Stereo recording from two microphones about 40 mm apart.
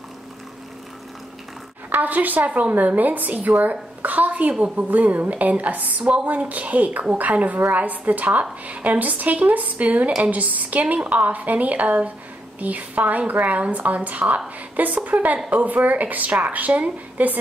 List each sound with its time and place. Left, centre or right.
1.9 s a woman's voice: right
4.6 s a woman's voice: right
4.9 s speech: right